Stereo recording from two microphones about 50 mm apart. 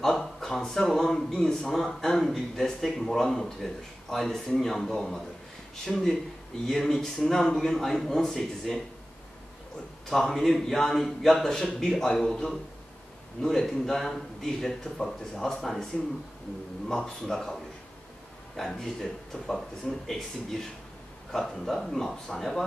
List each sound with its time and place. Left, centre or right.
0.0 s a man's voice: centre
10.0 s a man's voice: centre
18.6 s a man's voice: centre